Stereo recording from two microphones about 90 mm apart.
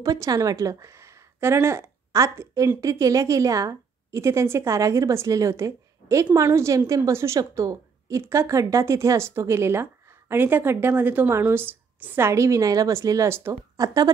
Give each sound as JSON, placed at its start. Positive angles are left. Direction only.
{"t": 0.0, "sound": "a woman's voice", "side_deg": -40}
{"t": 13.7, "sound": "a woman's voice", "side_deg": -40}